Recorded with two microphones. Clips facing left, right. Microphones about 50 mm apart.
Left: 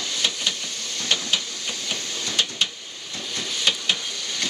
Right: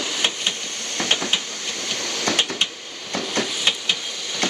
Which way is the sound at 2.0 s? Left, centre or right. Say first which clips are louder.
Right 7 dB; right.